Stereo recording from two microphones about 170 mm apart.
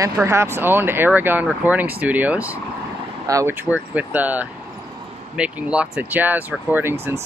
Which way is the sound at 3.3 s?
20° right (ahead or behind).